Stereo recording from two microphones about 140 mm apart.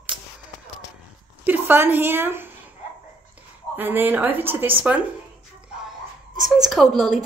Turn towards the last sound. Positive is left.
turn(degrees=0)  # may be behind; listen again after turning